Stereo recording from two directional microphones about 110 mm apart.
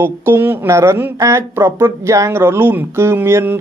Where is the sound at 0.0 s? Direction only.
20° right (ahead or behind).